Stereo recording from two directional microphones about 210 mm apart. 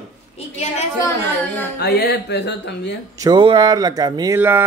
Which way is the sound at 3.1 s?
20° right (ahead or behind).